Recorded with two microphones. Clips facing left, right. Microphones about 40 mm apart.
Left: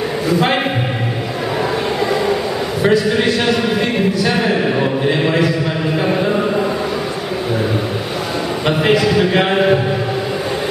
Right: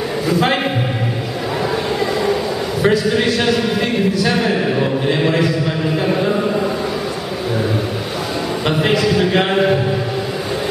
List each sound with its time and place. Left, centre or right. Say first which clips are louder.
0.3 s a man's voice: even; centre
2.8 s a man's voice: left 1 dB; centre
5.9 s a sound: left 1 dB; centre
8.6 s a man's voice: left 2 dB; centre